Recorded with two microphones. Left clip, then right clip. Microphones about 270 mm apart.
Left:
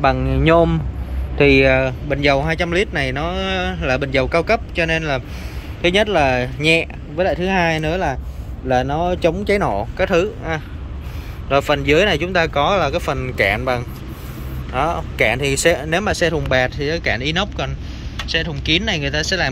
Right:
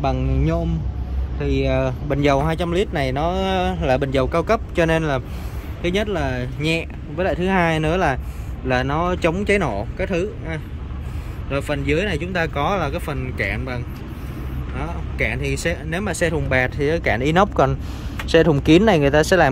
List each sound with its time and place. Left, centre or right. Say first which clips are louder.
0.0 s speech: left 6 dB; centre
1.5 s speech: left 5 dB; centre